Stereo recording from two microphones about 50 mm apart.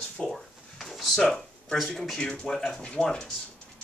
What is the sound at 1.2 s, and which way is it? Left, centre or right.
Speech, centre.